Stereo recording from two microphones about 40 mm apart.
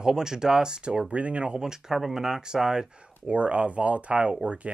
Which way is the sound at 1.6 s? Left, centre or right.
Centre.